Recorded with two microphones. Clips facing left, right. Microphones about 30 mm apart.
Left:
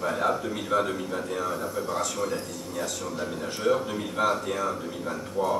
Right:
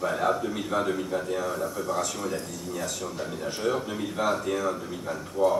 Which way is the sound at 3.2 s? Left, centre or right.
Centre.